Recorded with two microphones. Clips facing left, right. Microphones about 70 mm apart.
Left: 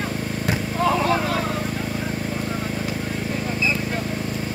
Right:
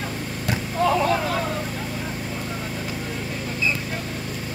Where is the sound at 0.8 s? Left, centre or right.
Centre.